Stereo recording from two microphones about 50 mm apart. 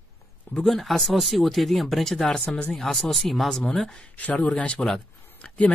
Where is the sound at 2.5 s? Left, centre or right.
Left.